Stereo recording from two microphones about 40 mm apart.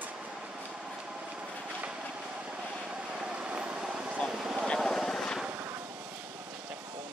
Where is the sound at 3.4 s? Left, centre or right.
Right.